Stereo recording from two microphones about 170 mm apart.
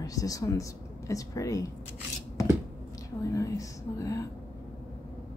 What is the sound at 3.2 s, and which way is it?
A woman's voice, 20° left (ahead or behind).